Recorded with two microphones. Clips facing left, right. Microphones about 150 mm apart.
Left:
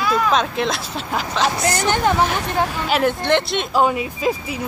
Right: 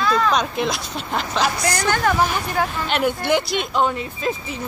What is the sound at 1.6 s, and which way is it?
Speech, 20° left (ahead or behind).